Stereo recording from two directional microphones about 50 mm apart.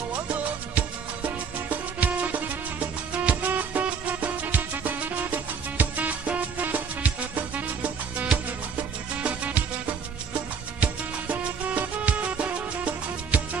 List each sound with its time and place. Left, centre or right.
0.1 s music: right
10.8 s music: right